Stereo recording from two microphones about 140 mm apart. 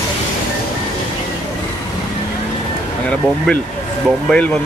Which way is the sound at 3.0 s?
5° left (ahead or behind).